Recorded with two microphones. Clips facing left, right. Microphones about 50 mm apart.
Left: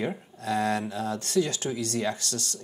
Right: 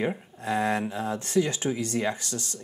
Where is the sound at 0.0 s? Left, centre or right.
Right.